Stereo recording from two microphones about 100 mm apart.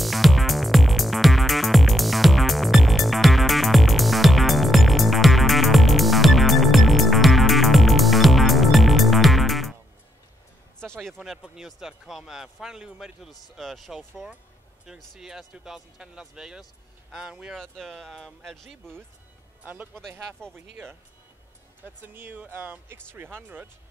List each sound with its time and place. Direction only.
0.0 s music: centre (ahead or behind)
10.8 s speech: 5° left (ahead or behind)
17.6 s speech: 5° left (ahead or behind)
19.6 s speech: 15° right (ahead or behind)
19.9 s speech: 5° left (ahead or behind)
22.0 s speech: 20° right (ahead or behind)